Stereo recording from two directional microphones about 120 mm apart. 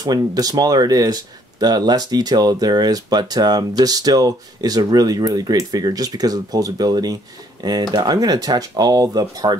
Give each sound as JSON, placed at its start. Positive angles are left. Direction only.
{"t": 0.0, "sound": "speech", "side_deg": -30}